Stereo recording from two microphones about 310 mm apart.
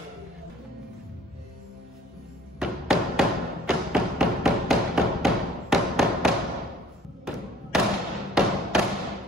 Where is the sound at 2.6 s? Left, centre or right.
Centre.